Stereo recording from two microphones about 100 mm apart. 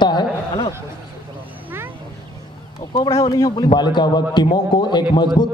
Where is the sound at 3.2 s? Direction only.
40° left (ahead or behind).